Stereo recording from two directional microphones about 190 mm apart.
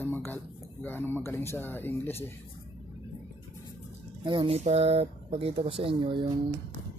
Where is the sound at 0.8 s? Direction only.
10° left (ahead or behind).